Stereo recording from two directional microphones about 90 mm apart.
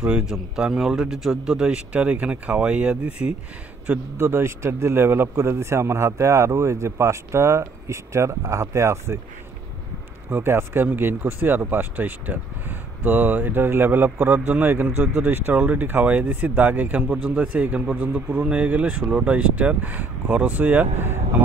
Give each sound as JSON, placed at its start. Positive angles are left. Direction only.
{"t": 0.0, "sound": "speech", "side_deg": -10}
{"t": 4.2, "sound": "speech", "side_deg": -25}
{"t": 10.3, "sound": "speech", "side_deg": -25}